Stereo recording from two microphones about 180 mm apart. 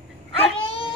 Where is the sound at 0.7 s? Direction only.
30° left (ahead or behind).